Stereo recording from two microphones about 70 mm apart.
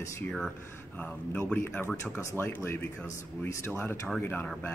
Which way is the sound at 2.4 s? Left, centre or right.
Left.